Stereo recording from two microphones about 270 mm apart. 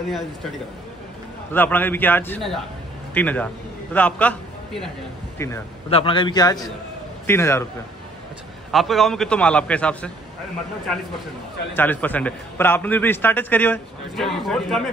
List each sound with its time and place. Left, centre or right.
1.5 s a man's voice: centre
8.7 s a man's voice: centre
11.7 s a man's voice: centre